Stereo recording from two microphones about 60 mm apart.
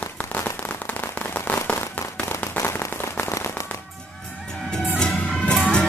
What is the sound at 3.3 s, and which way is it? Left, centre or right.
Firecracker, left.